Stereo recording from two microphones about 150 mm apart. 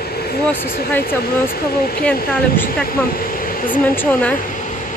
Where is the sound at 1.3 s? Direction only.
85° left.